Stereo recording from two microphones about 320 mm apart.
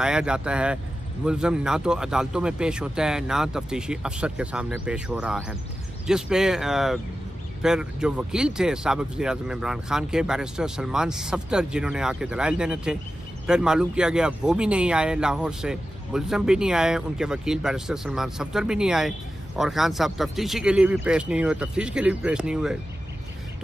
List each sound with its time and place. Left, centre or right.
0.0 s speech: centre